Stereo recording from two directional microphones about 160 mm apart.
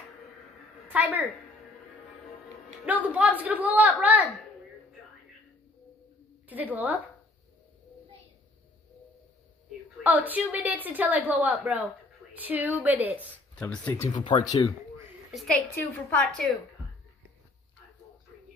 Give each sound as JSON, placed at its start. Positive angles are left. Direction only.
{"t": 0.8, "sound": "a woman's voice", "side_deg": -10}
{"t": 2.8, "sound": "a woman's voice", "side_deg": -10}
{"t": 6.5, "sound": "a woman's voice", "side_deg": -10}
{"t": 10.0, "sound": "a woman's voice", "side_deg": -10}
{"t": 13.6, "sound": "speech", "side_deg": 10}
{"t": 14.1, "sound": "speech", "side_deg": 30}
{"t": 15.3, "sound": "a woman's voice", "side_deg": 5}